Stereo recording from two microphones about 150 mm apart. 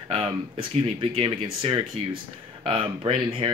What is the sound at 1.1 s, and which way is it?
Speech, 40° right (ahead or behind).